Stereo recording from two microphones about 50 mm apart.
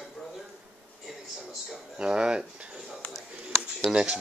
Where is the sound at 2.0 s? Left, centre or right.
Centre.